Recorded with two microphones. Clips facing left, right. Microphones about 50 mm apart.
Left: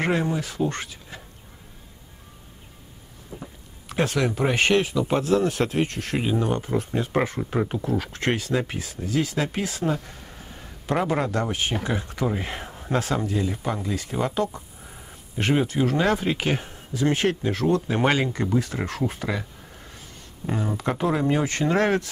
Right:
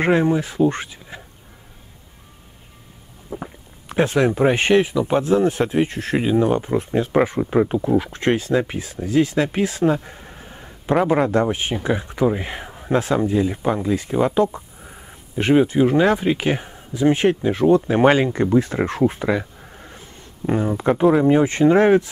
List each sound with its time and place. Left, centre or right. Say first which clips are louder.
0.0 s speech: right 7 dB; right
3.3 s speech: right 8 dB; centre
7.2 s speech: right 7 dB; centre